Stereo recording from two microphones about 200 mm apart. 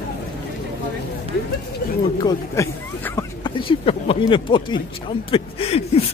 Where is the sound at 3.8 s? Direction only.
30° left (ahead or behind).